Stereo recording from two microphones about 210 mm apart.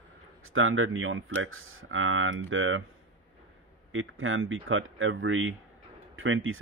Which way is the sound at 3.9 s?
70° right (ahead or behind).